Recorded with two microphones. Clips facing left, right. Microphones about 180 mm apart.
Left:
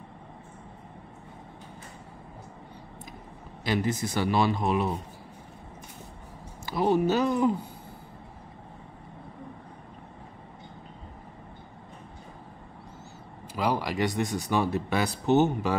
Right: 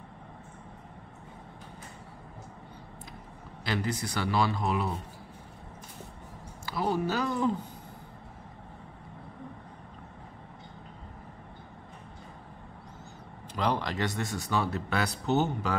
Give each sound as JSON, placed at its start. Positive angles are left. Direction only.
{"t": 3.6, "sound": "speech", "side_deg": 20}
{"t": 6.6, "sound": "speech", "side_deg": 20}
{"t": 13.6, "sound": "speech", "side_deg": 10}